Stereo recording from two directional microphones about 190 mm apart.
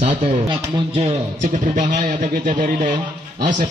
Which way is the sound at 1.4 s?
40° right (ahead or behind).